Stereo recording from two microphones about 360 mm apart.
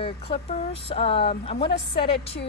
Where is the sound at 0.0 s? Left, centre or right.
Centre.